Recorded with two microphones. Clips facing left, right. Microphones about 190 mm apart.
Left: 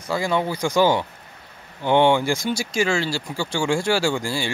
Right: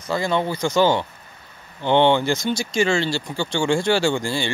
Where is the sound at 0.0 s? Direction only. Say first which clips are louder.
Right 1 dB; 10° left (ahead or behind).